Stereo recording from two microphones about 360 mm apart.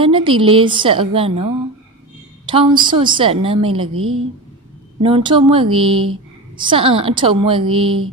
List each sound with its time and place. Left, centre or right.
0.0 s a woman's voice: centre
3.9 s a woman's voice: right
5.0 s a woman's voice: centre